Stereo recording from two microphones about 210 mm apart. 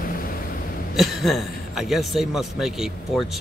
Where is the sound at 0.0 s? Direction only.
40° left (ahead or behind).